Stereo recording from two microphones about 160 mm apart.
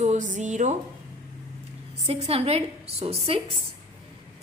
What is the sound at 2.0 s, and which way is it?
A woman's voice, 40° right (ahead or behind).